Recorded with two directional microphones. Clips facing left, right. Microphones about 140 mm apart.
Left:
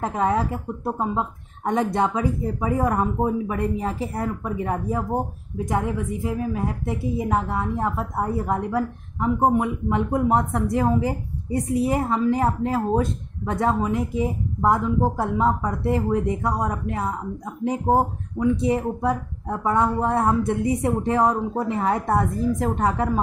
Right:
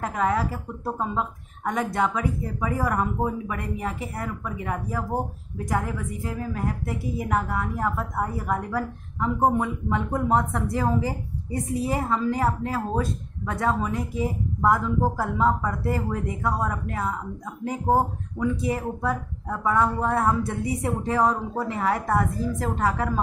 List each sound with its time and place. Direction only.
0.0 s a woman's voice: 25° left (ahead or behind)